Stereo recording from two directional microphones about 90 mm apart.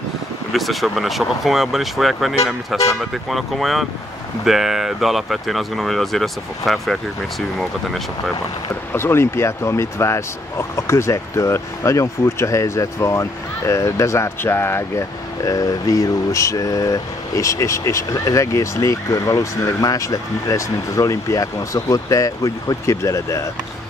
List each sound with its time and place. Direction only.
0.5 s speech: centre (ahead or behind)
8.9 s speech: 25° left (ahead or behind)